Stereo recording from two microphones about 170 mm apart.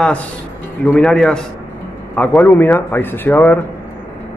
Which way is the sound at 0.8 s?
5° left (ahead or behind).